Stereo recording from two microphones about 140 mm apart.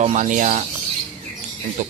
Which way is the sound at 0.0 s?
55° right (ahead or behind).